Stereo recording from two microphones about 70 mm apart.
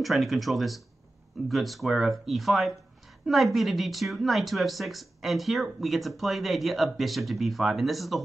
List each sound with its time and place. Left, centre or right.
0.0 s a woman's voice: centre